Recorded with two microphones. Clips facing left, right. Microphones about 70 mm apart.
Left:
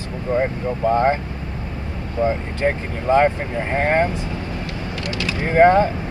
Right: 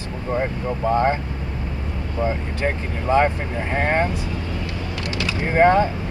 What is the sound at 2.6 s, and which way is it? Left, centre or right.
Speech, left.